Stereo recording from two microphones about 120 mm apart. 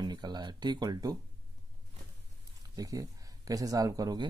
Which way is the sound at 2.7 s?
30° right (ahead or behind).